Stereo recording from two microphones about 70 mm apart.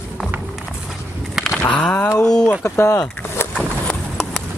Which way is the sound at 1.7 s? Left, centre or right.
Centre.